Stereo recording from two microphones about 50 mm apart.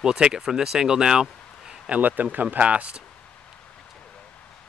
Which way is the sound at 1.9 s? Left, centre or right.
Right.